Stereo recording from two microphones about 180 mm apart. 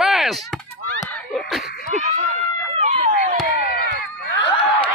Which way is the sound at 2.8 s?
45° right (ahead or behind).